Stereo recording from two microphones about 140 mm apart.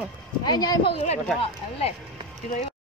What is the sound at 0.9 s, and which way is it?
Speech, 45° left (ahead or behind).